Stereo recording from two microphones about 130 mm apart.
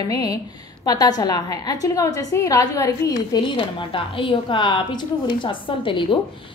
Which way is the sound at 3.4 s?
40° left (ahead or behind).